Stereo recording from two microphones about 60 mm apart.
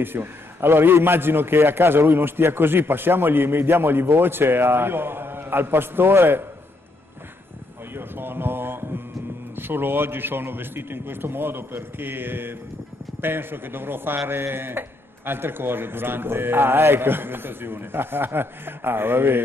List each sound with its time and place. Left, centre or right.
0.0 s a man's voice: right
7.9 s mantra: right
9.6 s a man's voice: right